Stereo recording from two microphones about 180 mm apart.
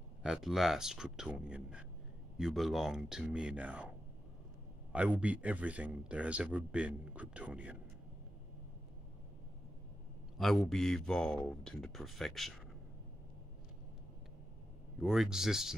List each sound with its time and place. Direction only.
0.2 s speech: centre (ahead or behind)
4.9 s speech: 5° right (ahead or behind)
10.3 s speech: centre (ahead or behind)
15.0 s speech: centre (ahead or behind)